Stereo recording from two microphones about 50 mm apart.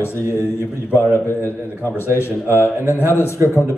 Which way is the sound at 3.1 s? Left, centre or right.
Left.